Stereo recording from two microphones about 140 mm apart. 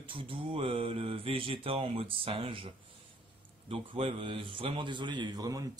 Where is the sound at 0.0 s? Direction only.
40° right (ahead or behind).